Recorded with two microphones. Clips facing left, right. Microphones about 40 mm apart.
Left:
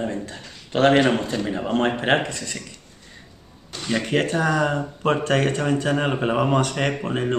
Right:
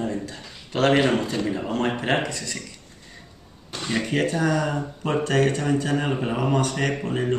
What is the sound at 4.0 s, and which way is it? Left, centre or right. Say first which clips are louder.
Speech: left 1 dB; left.